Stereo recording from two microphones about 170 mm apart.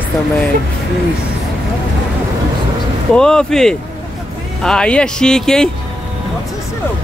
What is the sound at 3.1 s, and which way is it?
Speech, 5° left (ahead or behind).